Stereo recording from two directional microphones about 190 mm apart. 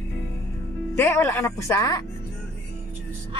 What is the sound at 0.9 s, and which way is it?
Speech, 15° left (ahead or behind).